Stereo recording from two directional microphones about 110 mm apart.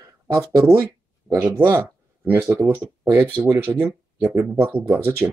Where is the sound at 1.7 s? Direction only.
20° right (ahead or behind).